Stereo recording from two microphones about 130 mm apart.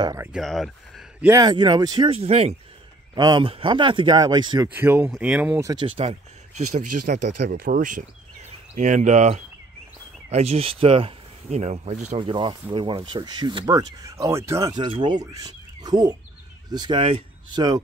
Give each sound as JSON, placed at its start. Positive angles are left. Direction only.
{"t": 0.3, "sound": "speech", "side_deg": 0}
{"t": 1.3, "sound": "speech", "side_deg": -30}
{"t": 2.0, "sound": "speech", "side_deg": -50}
{"t": 3.2, "sound": "speech", "side_deg": -35}
{"t": 4.7, "sound": "speech", "side_deg": -15}
{"t": 5.6, "sound": "speech", "side_deg": -30}
{"t": 5.9, "sound": "speech", "side_deg": -50}
{"t": 6.5, "sound": "speech", "side_deg": -70}
{"t": 8.7, "sound": "speech", "side_deg": -65}